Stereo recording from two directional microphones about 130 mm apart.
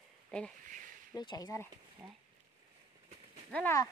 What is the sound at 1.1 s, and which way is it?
Speech, 30° left (ahead or behind).